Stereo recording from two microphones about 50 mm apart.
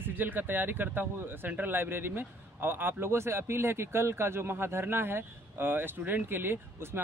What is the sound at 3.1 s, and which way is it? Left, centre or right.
A man's voice, right.